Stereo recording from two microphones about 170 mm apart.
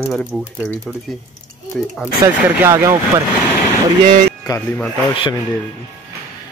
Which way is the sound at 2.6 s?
15° right (ahead or behind).